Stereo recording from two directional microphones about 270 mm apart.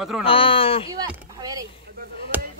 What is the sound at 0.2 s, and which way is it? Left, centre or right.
Speech, centre.